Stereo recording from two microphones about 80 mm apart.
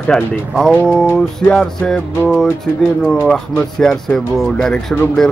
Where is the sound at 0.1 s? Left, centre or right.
Centre.